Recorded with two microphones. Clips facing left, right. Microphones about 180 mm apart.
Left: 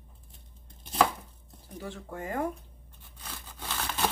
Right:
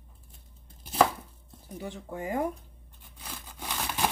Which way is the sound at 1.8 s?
15° right (ahead or behind).